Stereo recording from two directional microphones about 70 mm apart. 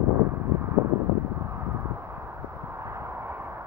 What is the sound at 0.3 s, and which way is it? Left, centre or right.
Vehicle, right.